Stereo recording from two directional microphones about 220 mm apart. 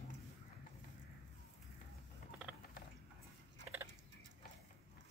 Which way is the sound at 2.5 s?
5° right (ahead or behind).